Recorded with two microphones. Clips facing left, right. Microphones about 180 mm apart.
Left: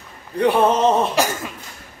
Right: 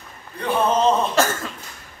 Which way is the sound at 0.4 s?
70° left (ahead or behind).